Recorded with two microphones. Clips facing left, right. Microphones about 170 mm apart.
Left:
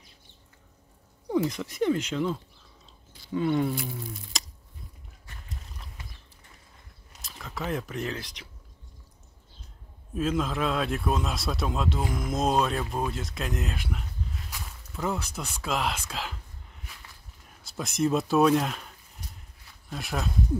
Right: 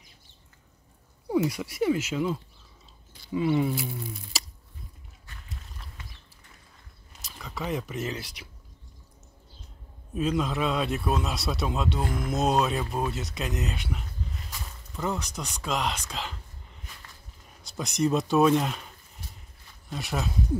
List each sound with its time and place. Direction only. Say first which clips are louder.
1.3 s a man's voice: right 1 dB; 10° right (ahead or behind)
7.2 s speech: even; centre (ahead or behind)
10.1 s a man's voice: right 1 dB; centre (ahead or behind)
17.6 s a man's voice: even; centre (ahead or behind)